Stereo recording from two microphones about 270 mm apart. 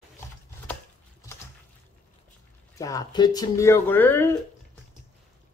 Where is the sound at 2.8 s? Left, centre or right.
Centre.